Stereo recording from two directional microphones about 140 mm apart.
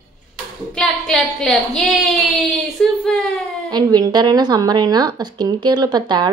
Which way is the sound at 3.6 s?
30° right (ahead or behind).